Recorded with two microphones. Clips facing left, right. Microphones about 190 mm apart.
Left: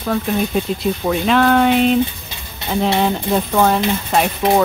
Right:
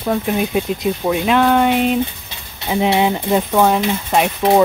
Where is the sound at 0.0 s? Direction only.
15° right (ahead or behind).